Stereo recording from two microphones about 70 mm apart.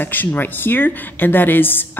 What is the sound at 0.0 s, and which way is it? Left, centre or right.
A woman's voice, left.